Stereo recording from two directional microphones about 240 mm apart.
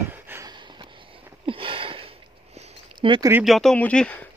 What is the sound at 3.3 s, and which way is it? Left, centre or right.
Speech, centre.